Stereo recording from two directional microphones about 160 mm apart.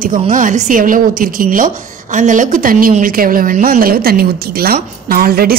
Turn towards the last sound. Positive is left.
turn(degrees=-70)  # may be behind; listen again after turning